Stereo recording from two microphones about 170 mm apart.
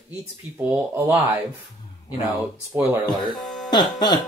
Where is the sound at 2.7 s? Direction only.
15° right (ahead or behind).